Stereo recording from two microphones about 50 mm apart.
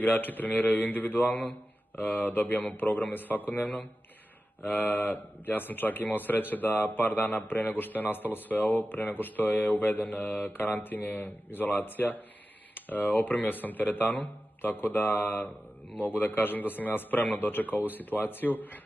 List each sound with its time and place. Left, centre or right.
0.0 s a man's voice: left